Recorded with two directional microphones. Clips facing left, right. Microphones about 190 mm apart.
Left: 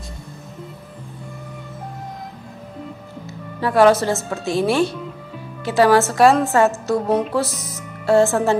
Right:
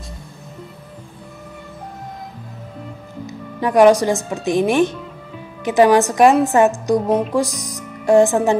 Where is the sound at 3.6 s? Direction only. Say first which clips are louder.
Right 2 dB; 15° right (ahead or behind).